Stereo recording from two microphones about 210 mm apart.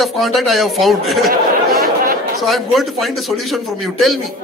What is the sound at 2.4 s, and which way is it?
A man's voice, centre (ahead or behind).